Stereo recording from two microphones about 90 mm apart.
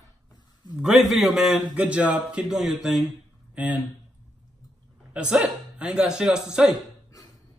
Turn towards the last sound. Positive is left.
turn(degrees=-10)  # may be behind; listen again after turning